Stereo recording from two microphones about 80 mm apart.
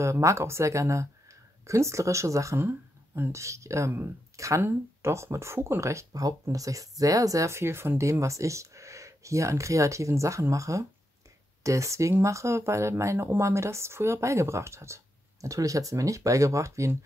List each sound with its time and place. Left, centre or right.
0.0 s speech: right
2.6 s speech: right